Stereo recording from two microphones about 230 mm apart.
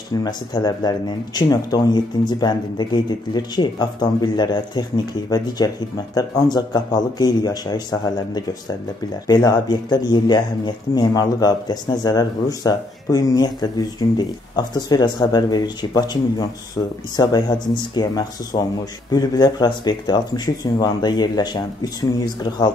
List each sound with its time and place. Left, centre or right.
0.1 s speech: centre